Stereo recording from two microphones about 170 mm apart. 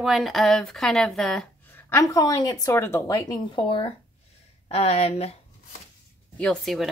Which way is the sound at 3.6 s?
30° left (ahead or behind).